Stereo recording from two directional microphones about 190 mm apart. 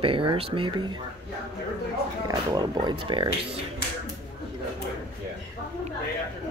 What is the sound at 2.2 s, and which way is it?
Speech, 20° right (ahead or behind).